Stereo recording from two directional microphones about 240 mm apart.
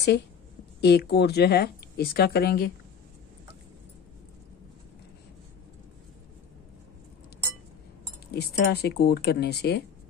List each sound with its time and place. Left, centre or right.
0.7 s speech: left
8.3 s speech: left